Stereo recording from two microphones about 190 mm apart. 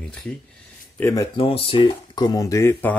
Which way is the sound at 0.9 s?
15° left (ahead or behind).